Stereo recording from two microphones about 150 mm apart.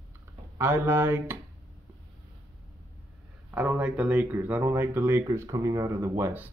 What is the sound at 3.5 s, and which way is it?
Speech, 10° right (ahead or behind).